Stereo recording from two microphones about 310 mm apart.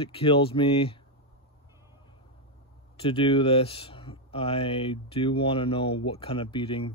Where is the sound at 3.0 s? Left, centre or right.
Centre.